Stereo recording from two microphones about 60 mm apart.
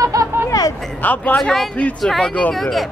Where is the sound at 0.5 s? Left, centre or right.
Left.